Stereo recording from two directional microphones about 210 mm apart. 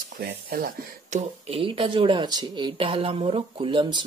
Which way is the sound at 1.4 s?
25° right (ahead or behind).